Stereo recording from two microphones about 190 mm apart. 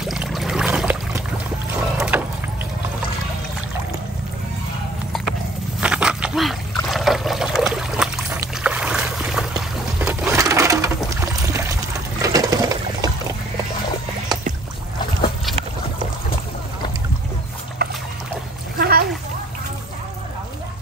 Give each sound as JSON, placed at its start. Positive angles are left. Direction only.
{"t": 0.0, "sound": "a sound", "side_deg": 0}
{"t": 1.8, "sound": "boat", "side_deg": -5}
{"t": 5.8, "sound": "trickle", "side_deg": -5}
{"t": 8.6, "sound": "boat", "side_deg": -5}
{"t": 9.9, "sound": "a sound", "side_deg": -5}
{"t": 17.8, "sound": "boat", "side_deg": -55}
{"t": 18.8, "sound": "splash", "side_deg": -55}